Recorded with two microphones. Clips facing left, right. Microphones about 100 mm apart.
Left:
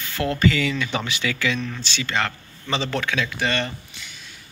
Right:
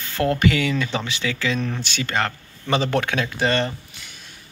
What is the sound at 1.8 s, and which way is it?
Speech, 50° right (ahead or behind).